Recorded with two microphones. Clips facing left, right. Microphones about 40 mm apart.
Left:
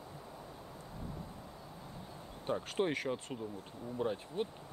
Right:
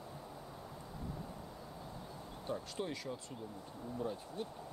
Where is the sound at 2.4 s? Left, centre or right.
Left.